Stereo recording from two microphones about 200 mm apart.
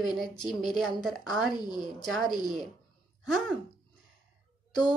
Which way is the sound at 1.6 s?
20° left (ahead or behind).